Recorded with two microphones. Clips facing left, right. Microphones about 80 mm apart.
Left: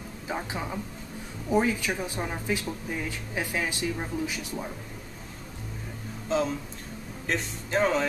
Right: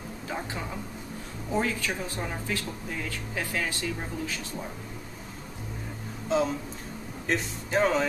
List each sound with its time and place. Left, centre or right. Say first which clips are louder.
0.3 s speech: left 2 dB; centre
6.2 s speech: right 1 dB; centre